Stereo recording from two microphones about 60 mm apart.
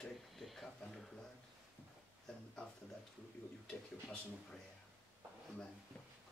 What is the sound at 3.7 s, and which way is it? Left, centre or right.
Speech, centre.